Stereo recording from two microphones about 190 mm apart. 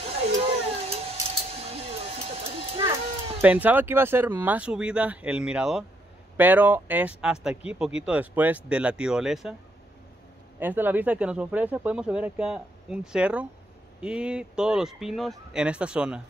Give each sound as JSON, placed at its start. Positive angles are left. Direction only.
{"t": 0.2, "sound": "a sound", "side_deg": -30}
{"t": 1.6, "sound": "music", "side_deg": -30}
{"t": 3.3, "sound": "speech", "side_deg": -10}
{"t": 10.6, "sound": "speech", "side_deg": -10}